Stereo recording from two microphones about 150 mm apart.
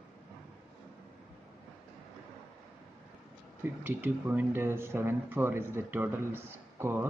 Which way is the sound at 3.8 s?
10° right (ahead or behind).